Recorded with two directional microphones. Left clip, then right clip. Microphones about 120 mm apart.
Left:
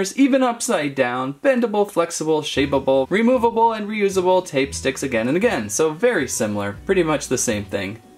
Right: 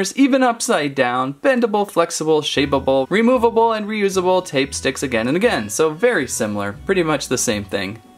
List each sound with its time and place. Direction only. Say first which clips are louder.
0.0 s speech: right 2 dB; 20° right (ahead or behind)